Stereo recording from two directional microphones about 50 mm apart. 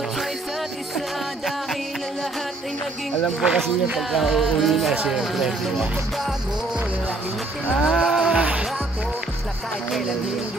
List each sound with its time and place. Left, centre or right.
0.9 s music: centre
3.3 s music: centre
7.9 s music: centre